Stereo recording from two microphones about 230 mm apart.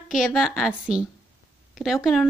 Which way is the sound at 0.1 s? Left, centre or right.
Centre.